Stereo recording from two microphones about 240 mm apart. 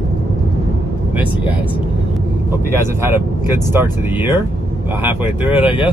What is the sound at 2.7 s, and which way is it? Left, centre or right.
Speech, centre.